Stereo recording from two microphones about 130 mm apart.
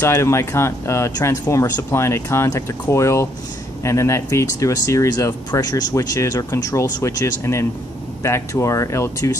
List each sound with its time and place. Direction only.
0.0 s speech: 20° left (ahead or behind)